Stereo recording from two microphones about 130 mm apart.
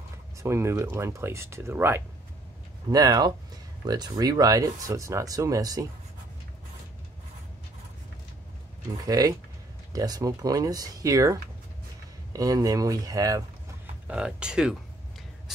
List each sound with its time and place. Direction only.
0.4 s speech: 20° right (ahead or behind)
2.9 s speech: 30° right (ahead or behind)
8.9 s speech: 30° right (ahead or behind)
14.0 s speech: 10° right (ahead or behind)